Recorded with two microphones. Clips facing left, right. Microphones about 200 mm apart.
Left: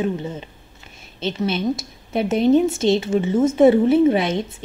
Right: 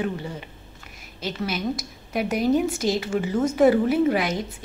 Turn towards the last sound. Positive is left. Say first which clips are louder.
# left 5 dB
turn(degrees=25)  # may be behind; listen again after turning